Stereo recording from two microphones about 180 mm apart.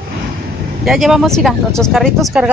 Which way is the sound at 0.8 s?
Centre (ahead or behind).